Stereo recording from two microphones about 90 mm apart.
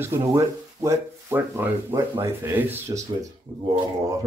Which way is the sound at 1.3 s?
25° right (ahead or behind).